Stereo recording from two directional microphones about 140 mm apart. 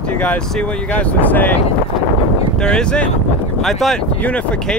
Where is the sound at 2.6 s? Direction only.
5° left (ahead or behind).